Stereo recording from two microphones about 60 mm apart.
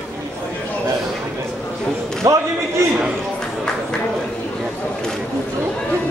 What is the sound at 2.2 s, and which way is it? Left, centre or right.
Speech, right.